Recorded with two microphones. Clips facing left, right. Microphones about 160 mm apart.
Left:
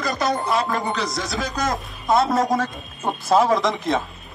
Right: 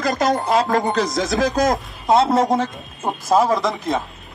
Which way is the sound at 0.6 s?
40° right (ahead or behind).